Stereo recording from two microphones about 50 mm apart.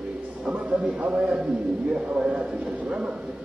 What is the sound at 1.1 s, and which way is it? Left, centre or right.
A man's voice, centre.